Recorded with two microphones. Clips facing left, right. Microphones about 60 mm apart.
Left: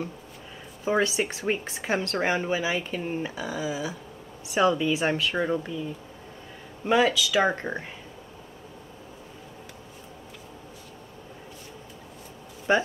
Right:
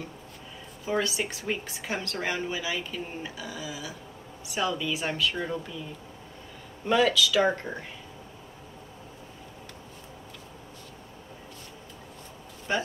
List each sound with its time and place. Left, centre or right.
0.8 s a woman's voice: left
6.9 s a woman's voice: centre